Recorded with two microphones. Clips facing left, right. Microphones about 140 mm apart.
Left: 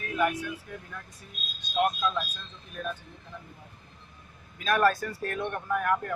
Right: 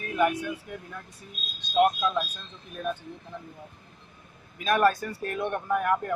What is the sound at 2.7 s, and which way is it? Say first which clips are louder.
Speech: right 4 dB; 20° right (ahead or behind).